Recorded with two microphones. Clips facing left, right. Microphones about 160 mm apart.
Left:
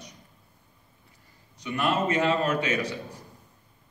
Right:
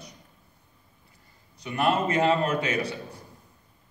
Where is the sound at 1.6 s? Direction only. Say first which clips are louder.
Right 1 dB; 35° right (ahead or behind).